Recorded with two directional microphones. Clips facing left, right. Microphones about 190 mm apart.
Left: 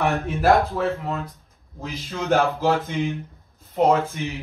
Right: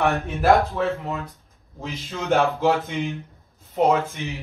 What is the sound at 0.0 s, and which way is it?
A man's voice, centre (ahead or behind).